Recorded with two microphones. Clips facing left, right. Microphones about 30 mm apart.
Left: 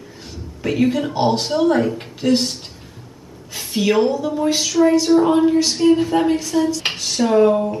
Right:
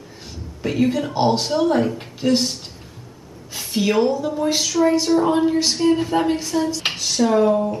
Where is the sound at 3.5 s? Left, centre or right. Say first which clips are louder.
Left 2 dB; centre.